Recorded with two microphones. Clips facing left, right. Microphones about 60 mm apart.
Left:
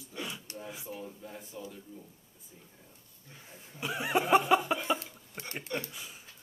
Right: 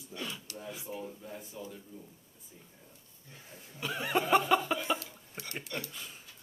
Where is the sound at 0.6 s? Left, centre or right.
Centre.